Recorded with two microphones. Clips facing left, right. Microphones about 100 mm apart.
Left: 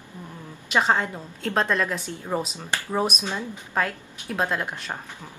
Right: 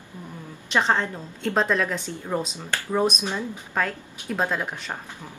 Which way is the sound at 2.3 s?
15° left (ahead or behind).